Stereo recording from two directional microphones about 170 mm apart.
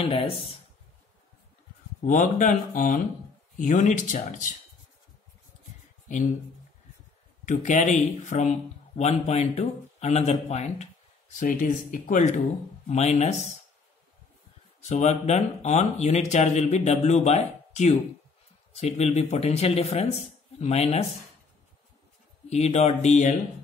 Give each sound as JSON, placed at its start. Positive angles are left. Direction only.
{"t": 0.0, "sound": "speech", "side_deg": 35}
{"t": 2.0, "sound": "speech", "side_deg": 50}
{"t": 7.4, "sound": "speech", "side_deg": 45}
{"t": 14.8, "sound": "speech", "side_deg": 40}
{"t": 22.5, "sound": "speech", "side_deg": 40}